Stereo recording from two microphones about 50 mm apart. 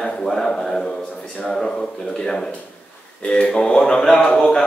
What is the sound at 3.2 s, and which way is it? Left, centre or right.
Speech, centre.